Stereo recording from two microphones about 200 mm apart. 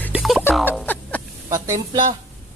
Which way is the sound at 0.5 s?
5° left (ahead or behind).